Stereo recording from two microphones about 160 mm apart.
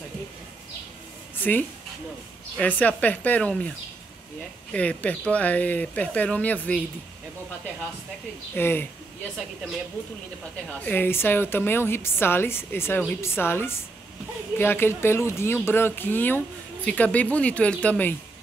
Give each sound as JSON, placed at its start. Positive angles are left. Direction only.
{"t": 1.4, "sound": "speech", "side_deg": 10}
{"t": 4.7, "sound": "speech", "side_deg": 10}
{"t": 8.5, "sound": "speech", "side_deg": 15}
{"t": 10.7, "sound": "speech", "side_deg": 10}